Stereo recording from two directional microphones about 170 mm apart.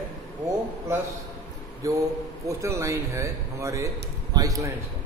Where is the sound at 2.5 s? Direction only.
15° right (ahead or behind).